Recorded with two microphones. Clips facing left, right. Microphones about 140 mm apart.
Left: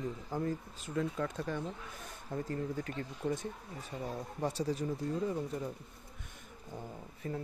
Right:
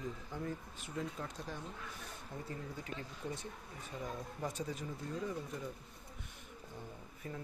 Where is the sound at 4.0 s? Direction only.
35° left (ahead or behind).